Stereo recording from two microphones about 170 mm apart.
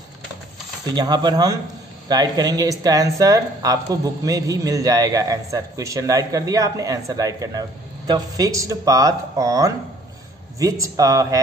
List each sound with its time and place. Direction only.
0.9 s speech: 25° right (ahead or behind)